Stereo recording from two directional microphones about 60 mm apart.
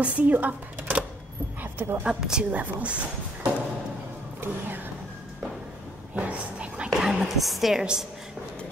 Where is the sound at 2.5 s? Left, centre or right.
Right.